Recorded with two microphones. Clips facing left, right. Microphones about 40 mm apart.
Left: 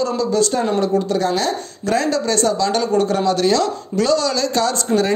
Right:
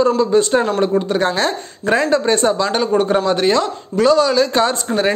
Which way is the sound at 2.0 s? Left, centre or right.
Right.